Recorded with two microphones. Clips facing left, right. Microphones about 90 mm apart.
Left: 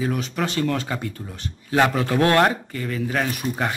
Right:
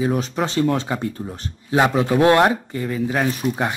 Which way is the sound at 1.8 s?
15° right (ahead or behind).